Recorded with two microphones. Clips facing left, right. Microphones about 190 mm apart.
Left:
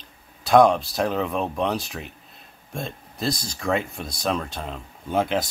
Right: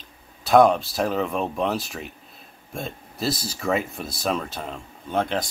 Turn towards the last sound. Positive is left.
turn(degrees=5)  # may be behind; listen again after turning